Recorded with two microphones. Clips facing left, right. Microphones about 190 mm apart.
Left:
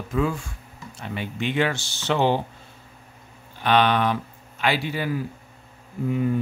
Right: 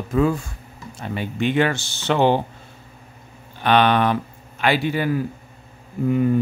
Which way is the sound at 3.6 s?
60° right (ahead or behind).